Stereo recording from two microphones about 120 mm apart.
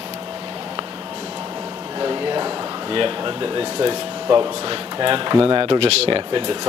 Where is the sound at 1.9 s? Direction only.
40° right (ahead or behind).